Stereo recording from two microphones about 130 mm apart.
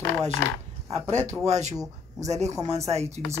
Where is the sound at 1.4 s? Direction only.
60° right (ahead or behind).